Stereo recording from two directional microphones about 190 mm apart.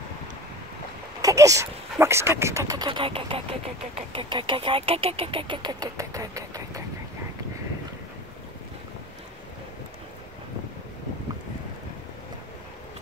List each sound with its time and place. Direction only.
1.2 s speech: 15° right (ahead or behind)